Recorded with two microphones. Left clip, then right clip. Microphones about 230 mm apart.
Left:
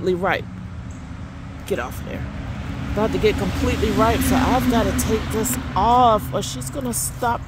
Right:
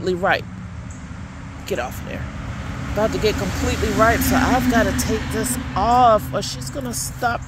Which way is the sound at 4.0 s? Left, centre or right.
Centre.